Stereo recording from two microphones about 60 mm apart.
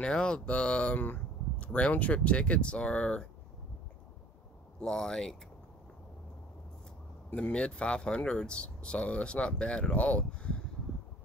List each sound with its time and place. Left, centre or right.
0.0 s speech: centre
4.8 s speech: centre
7.3 s speech: centre